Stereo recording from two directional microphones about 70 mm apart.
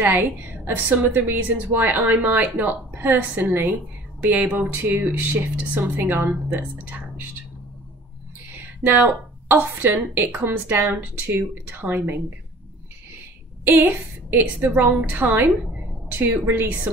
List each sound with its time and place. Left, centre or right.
0.0 s a woman's voice: right
8.5 s a woman's voice: right
13.7 s a woman's voice: right